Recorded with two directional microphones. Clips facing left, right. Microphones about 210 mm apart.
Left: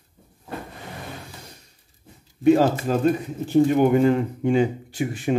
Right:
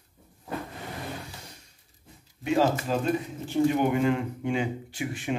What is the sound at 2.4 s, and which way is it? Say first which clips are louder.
Speech: left 7 dB; 45° left (ahead or behind).